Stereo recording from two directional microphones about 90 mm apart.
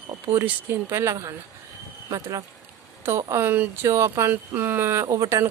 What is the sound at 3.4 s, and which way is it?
Speech, 25° right (ahead or behind).